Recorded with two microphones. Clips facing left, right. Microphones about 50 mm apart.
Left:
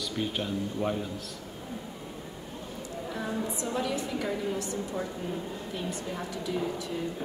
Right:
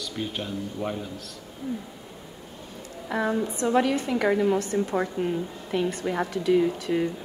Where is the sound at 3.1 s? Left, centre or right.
Right.